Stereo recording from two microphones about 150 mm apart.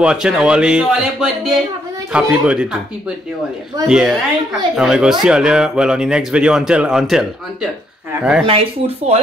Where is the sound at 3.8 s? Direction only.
5° right (ahead or behind).